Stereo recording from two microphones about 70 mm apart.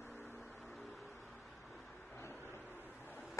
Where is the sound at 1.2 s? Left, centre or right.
Centre.